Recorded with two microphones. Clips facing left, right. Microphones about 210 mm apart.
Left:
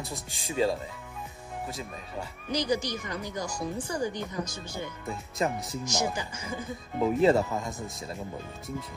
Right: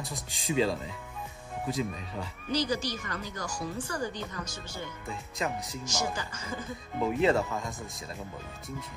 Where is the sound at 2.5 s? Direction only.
15° left (ahead or behind).